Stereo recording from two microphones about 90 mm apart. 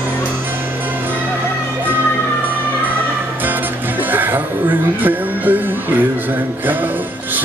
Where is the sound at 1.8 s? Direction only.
20° right (ahead or behind).